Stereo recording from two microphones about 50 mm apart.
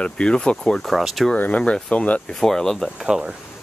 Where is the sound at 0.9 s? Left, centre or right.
Centre.